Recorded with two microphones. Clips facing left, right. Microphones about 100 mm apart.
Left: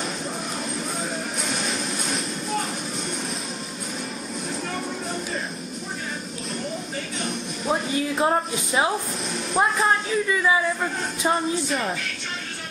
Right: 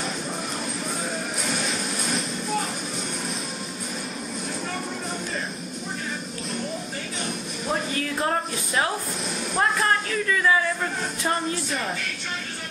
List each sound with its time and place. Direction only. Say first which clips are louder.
7.6 s music: left 3 dB; 15° left (ahead or behind)
9.6 s speech: left 2 dB; 10° left (ahead or behind)